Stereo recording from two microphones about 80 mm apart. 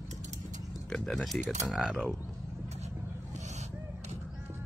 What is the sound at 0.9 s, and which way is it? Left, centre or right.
Speech, centre.